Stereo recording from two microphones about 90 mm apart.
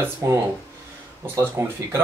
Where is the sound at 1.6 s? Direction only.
30° right (ahead or behind).